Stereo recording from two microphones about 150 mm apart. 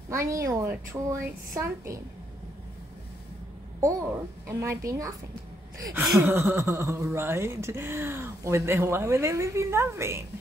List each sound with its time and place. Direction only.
0.1 s a woman's voice: 20° right (ahead or behind)
3.8 s a child's voice: 20° right (ahead or behind)